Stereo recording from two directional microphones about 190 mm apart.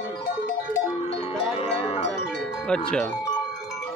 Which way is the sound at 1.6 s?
30° left (ahead or behind).